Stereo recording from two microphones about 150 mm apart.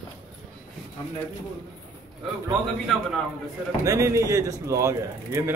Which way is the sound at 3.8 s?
20° right (ahead or behind).